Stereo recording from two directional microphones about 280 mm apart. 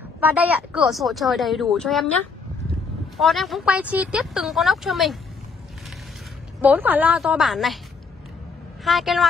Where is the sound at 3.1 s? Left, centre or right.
Centre.